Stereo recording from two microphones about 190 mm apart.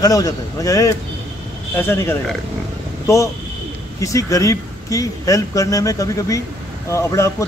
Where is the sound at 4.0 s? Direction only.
15° left (ahead or behind).